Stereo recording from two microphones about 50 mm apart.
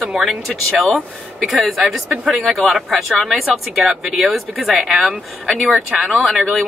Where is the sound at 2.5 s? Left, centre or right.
Centre.